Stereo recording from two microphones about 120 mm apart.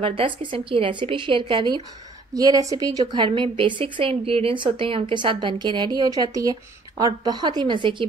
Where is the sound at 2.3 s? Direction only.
30° right (ahead or behind).